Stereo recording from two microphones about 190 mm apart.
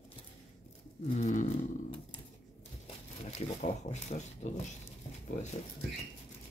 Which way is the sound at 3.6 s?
40° left (ahead or behind).